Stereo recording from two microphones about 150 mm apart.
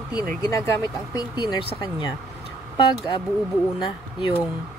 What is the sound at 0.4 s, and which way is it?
Speech, 20° left (ahead or behind).